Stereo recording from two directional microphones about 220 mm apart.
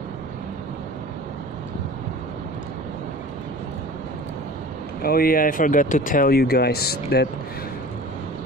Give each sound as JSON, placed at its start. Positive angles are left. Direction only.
{"t": 5.0, "sound": "speech", "side_deg": 40}